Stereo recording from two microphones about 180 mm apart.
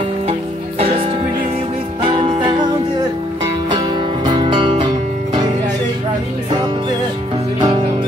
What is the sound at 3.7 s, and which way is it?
Music, 25° right (ahead or behind).